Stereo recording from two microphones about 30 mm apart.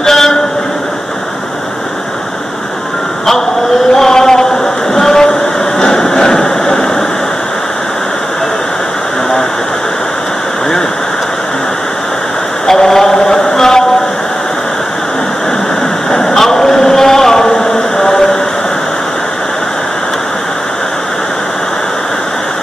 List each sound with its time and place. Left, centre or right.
0.0 s vehicle: centre
3.9 s chant: centre
4.9 s train: centre
5.8 s a sound: left
12.6 s mantra: centre
16.1 s a sound: left
17.5 s music: left